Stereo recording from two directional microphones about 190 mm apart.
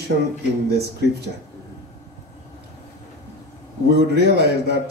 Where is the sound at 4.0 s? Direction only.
60° right (ahead or behind).